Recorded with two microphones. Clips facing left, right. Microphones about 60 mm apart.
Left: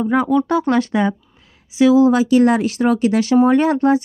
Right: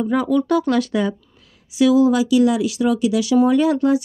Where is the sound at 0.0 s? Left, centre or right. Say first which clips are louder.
Left 2 dB; left.